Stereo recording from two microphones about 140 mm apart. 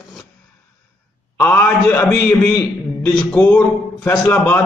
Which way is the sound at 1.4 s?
10° left (ahead or behind).